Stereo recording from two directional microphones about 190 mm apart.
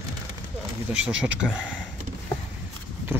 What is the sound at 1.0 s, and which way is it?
Speech, 5° right (ahead or behind).